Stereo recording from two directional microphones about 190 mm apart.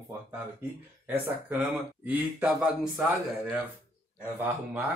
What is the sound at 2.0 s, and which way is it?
Speech, 5° right (ahead or behind).